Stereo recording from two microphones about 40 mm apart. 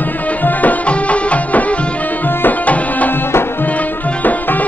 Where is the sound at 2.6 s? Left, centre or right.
Left.